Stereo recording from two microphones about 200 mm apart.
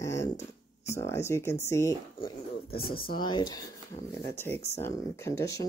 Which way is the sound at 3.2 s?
20° left (ahead or behind).